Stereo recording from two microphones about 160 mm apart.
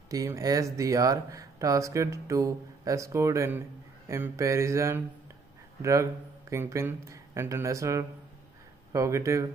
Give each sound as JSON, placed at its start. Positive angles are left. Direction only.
{"t": 0.1, "sound": "a man's voice", "side_deg": -20}